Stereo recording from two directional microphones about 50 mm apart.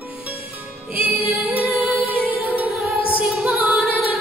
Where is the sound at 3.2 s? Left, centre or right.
Centre.